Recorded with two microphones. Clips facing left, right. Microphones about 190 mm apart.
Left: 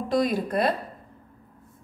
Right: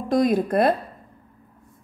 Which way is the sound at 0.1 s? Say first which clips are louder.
Right 5 dB; 50° right (ahead or behind).